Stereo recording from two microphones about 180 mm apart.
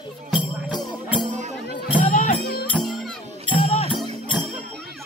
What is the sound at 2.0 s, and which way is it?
Music, 45° left (ahead or behind).